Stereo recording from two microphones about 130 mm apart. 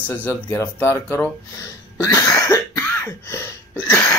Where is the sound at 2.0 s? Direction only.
20° left (ahead or behind).